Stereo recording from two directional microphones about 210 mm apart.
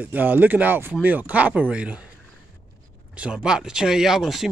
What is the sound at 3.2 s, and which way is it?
Speech, 5° right (ahead or behind).